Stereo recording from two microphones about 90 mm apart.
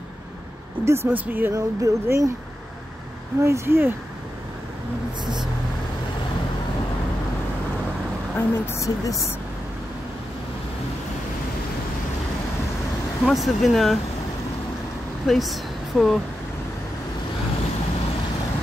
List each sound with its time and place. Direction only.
0.8 s speech: 30° right (ahead or behind)
1.5 s speech: 35° right (ahead or behind)
3.3 s speech: 30° right (ahead or behind)
5.2 s speech: 55° right (ahead or behind)
8.4 s a woman's voice: 35° left (ahead or behind)
13.2 s speech: centre (ahead or behind)
15.2 s speech: centre (ahead or behind)